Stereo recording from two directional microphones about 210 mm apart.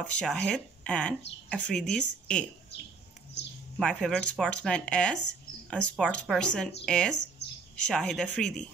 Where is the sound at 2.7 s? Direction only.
55° left (ahead or behind).